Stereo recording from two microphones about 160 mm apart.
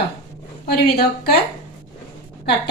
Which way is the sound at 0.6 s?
80° left.